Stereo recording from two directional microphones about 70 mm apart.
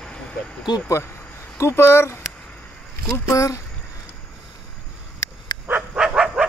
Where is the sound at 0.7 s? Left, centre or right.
Left.